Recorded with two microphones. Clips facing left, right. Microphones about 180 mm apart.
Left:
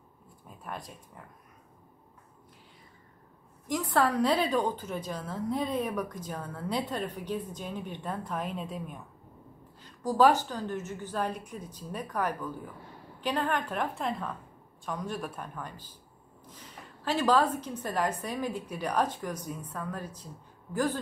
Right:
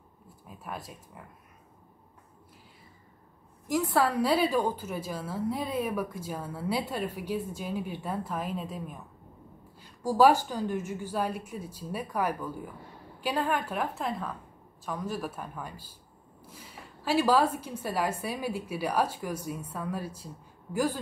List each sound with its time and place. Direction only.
0.7 s a man's voice: 5° right (ahead or behind)
3.6 s a woman's voice: 5° right (ahead or behind)